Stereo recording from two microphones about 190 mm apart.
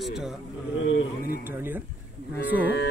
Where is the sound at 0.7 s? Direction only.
75° left (ahead or behind).